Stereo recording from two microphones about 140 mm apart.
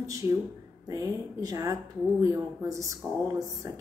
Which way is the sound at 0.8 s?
25° right (ahead or behind).